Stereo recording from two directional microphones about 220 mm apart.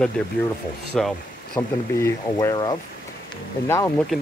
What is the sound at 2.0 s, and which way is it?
Speech, 10° left (ahead or behind).